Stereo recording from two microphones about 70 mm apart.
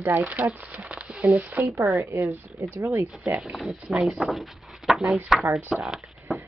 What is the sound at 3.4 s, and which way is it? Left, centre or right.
Speech, centre.